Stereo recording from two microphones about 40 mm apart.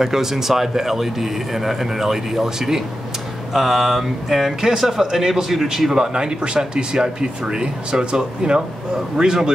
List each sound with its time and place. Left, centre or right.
0.0 s speech: centre